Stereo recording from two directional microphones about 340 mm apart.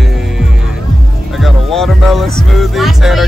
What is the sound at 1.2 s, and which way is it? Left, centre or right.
Speech, centre.